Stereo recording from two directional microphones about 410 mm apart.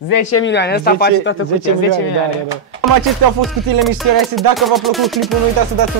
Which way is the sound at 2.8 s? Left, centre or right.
Right.